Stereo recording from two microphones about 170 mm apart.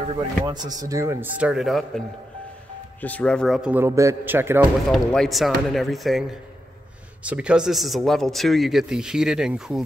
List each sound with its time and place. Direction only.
0.0 s speech: 35° right (ahead or behind)
0.5 s a man's voice: 25° right (ahead or behind); by 3.7 s centre (ahead or behind)
3.7 s speech: 15° right (ahead or behind)
4.9 s a man's voice: 5° left (ahead or behind)
7.2 s a man's voice: 5° right (ahead or behind)